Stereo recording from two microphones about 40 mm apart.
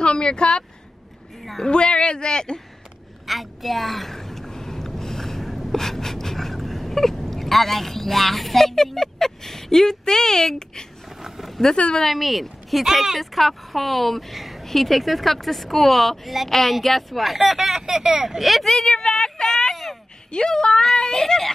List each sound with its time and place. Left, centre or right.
0.0 s speech: left
3.3 s a sound: centre
11.2 s a sound: centre
11.7 s speech: left
12.1 s speech: centre
18.4 s speech: centre
18.7 s speech: centre
20.2 s speech: left